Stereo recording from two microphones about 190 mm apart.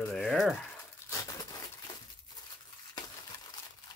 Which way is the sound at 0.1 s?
Centre (ahead or behind).